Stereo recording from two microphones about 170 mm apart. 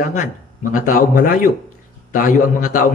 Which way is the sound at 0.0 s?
50° left (ahead or behind).